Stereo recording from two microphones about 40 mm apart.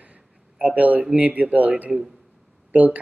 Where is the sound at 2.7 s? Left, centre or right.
Right.